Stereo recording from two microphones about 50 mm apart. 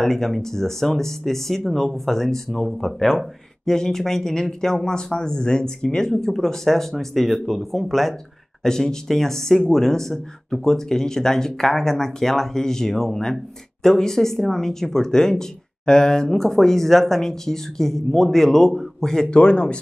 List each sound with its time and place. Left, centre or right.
0.0 s speech: centre
19.3 s speech: left